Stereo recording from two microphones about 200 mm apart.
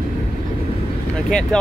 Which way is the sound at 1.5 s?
5° left (ahead or behind).